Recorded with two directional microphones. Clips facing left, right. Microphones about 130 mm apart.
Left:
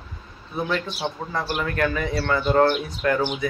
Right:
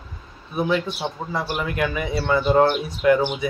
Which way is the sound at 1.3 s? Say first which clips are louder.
Right 1 dB; 10° right (ahead or behind).